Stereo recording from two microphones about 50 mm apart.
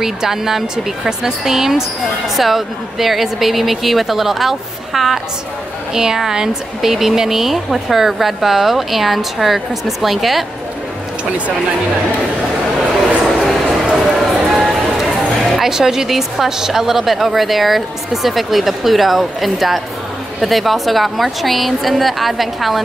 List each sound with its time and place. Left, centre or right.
0.0 s speech: centre
13.2 s a sound: centre
13.9 s run: centre
15.6 s speech: centre